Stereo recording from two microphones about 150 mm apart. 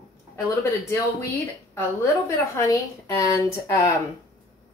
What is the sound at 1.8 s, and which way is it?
Speech, 20° left (ahead or behind).